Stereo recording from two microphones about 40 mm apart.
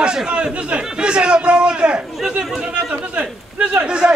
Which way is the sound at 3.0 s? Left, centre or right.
Right.